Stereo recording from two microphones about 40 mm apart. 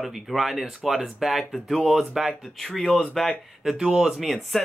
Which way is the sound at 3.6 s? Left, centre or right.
Centre.